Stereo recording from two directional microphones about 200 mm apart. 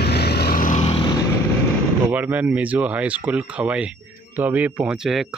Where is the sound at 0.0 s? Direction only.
55° left (ahead or behind).